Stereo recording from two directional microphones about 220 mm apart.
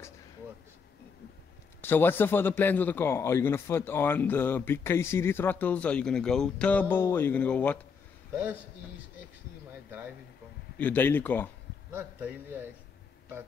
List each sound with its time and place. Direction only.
1.8 s a man's voice: 10° left (ahead or behind)
10.8 s a man's voice: 10° left (ahead or behind)
11.9 s a man's voice: 10° right (ahead or behind)